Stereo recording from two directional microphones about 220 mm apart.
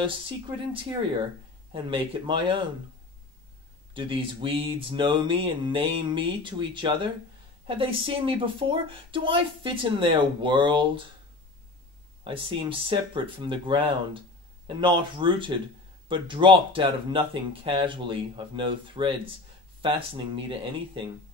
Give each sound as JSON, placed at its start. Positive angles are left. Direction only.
{"t": 1.7, "sound": "a woman's voice", "side_deg": -25}
{"t": 3.9, "sound": "a woman's voice", "side_deg": -20}
{"t": 12.3, "sound": "a woman's voice", "side_deg": -25}